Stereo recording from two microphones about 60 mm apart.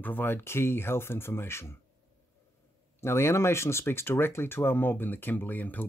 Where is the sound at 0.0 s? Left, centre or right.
Left.